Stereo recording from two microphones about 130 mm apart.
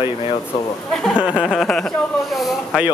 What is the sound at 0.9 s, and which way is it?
Speech, 5° left (ahead or behind).